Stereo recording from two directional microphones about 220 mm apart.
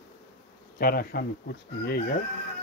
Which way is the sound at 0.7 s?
40° left (ahead or behind).